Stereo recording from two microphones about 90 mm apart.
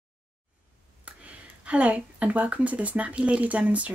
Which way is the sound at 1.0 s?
15° right (ahead or behind).